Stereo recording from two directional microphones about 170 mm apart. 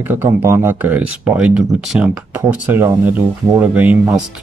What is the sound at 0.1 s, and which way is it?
Speech, 15° right (ahead or behind).